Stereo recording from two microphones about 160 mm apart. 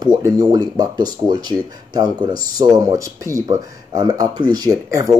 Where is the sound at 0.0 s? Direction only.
20° right (ahead or behind).